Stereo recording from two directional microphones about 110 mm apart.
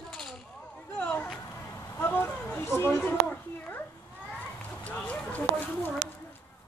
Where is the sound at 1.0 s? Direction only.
15° left (ahead or behind).